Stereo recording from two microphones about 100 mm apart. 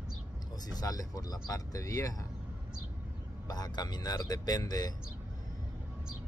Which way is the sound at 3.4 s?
40° left (ahead or behind).